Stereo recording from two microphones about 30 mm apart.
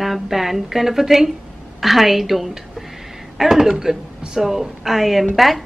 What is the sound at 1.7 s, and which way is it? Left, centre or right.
Speech, centre.